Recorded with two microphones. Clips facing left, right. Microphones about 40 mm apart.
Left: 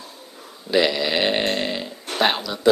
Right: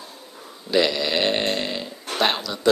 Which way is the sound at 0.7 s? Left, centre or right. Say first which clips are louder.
Left 1 dB; centre.